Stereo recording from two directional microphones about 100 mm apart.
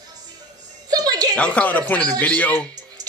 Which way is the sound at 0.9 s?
40° right (ahead or behind).